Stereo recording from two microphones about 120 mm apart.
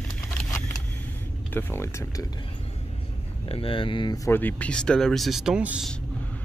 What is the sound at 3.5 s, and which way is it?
Speech, 50° left (ahead or behind).